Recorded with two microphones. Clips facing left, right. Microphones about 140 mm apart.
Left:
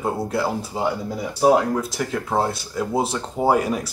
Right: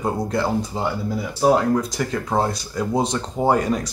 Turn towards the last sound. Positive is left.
turn(degrees=10)  # may be behind; listen again after turning